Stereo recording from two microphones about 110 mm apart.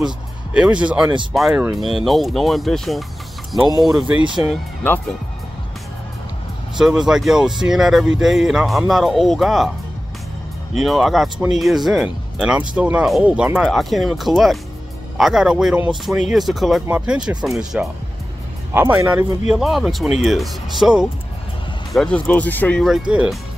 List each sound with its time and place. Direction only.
0.0 s speech: 10° right (ahead or behind)
6.8 s speech: 5° right (ahead or behind)
10.7 s speech: centre (ahead or behind)
12.7 s speech: 10° right (ahead or behind)
13.7 s speech: centre (ahead or behind)
18.7 s speech: 20° right (ahead or behind)
19.5 s speech: centre (ahead or behind)
21.9 s speech: 10° left (ahead or behind)
23.0 s speech: 10° right (ahead or behind)